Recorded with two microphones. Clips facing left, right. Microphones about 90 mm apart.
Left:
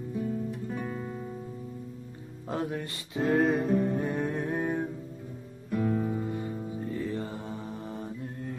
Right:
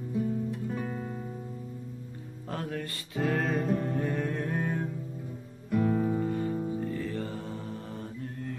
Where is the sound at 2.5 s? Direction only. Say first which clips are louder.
Left 3 dB; 20° left (ahead or behind).